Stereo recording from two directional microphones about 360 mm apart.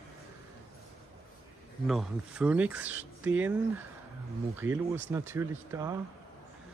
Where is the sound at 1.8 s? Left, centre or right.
Centre.